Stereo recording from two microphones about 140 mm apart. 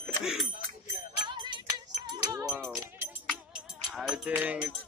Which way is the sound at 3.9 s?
5° right (ahead or behind).